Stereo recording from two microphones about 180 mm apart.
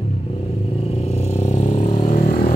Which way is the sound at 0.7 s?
35° left (ahead or behind).